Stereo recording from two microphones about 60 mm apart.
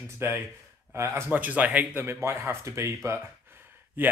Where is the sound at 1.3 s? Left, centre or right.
Right.